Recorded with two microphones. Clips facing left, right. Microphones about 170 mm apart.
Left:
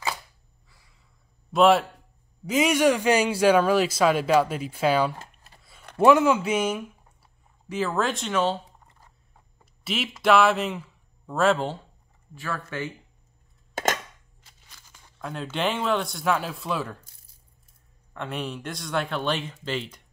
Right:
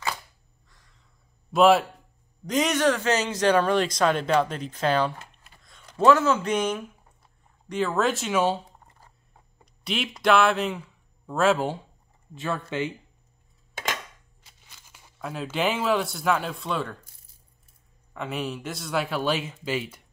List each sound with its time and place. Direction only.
0.7 s a sound: 10° left (ahead or behind)
1.5 s a man's voice: centre (ahead or behind)
9.8 s speech: centre (ahead or behind)
12.4 s speech: 20° right (ahead or behind)
14.8 s speech: 10° right (ahead or behind); by 17.0 s 5° left (ahead or behind)
18.1 s speech: 5° right (ahead or behind)